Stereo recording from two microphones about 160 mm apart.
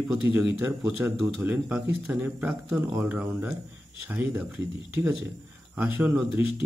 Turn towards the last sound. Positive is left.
turn(degrees=-10)  # may be behind; listen again after turning